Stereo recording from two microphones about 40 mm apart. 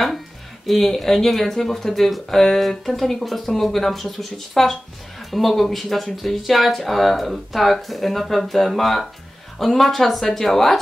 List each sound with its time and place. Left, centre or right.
0.7 s speech: centre